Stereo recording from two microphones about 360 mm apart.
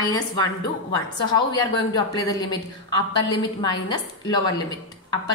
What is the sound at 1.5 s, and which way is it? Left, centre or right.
A woman's voice, centre.